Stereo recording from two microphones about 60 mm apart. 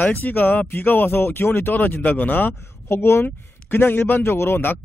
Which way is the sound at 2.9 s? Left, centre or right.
Left.